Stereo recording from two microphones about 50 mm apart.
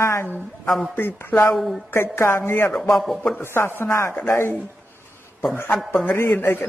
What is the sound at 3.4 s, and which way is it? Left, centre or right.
Speech, left.